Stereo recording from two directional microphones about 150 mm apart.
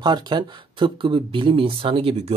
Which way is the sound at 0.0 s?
30° right (ahead or behind).